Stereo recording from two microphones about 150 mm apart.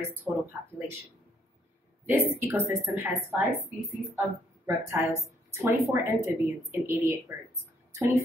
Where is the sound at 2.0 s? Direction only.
15° right (ahead or behind).